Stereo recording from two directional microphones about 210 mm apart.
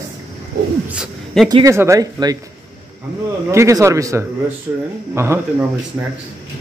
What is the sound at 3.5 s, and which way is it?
Speech, 15° right (ahead or behind).